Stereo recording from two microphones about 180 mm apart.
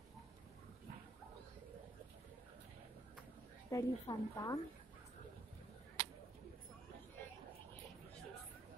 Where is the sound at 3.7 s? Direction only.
15° left (ahead or behind).